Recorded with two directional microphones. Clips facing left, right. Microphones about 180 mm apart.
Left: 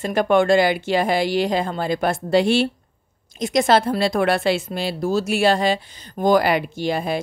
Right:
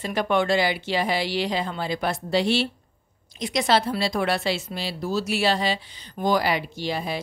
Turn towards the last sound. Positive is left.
turn(degrees=50)  # may be behind; listen again after turning